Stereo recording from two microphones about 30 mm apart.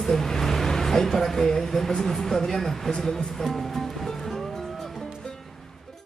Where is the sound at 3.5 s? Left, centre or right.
Centre.